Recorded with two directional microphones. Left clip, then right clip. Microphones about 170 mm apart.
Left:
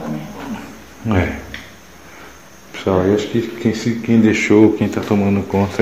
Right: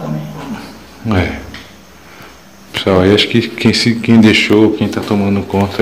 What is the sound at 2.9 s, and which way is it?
Speech, 15° right (ahead or behind).